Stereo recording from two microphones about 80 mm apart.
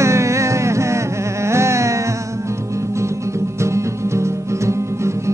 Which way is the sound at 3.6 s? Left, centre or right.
Right.